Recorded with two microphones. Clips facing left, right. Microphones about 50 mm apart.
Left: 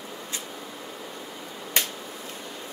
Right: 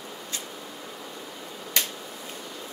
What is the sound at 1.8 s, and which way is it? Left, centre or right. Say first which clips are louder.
Finger snapping: left 1 dB; centre.